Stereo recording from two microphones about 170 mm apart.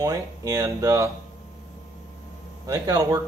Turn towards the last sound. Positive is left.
turn(degrees=-20)  # may be behind; listen again after turning